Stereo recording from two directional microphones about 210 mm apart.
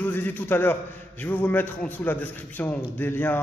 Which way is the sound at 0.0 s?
10° left (ahead or behind).